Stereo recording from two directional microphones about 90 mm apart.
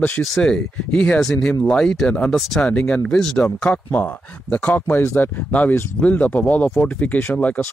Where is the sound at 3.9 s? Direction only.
15° left (ahead or behind).